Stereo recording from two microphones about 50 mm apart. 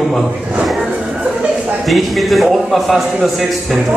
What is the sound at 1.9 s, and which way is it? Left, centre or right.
A man's voice, centre.